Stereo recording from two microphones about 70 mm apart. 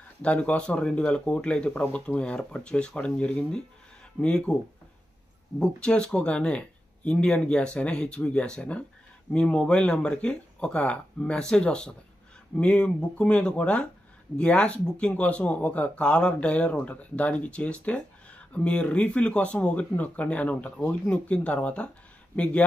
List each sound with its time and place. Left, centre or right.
0.2 s speech: centre
5.6 s speech: centre